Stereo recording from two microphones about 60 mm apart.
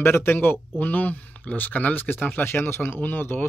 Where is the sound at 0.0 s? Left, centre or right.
Left.